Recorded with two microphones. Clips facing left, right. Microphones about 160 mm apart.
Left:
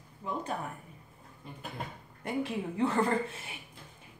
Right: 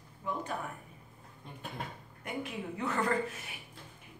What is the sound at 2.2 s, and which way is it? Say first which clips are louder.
A woman's voice: left 5 dB; 30° left (ahead or behind).